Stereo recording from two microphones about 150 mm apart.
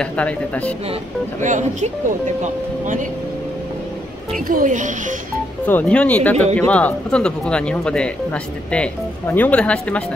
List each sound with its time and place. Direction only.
0.0 s speech: 10° left (ahead or behind)
1.4 s speech: 55° right (ahead or behind)
4.5 s speech: 65° right (ahead or behind)
5.7 s speech: 10° left (ahead or behind)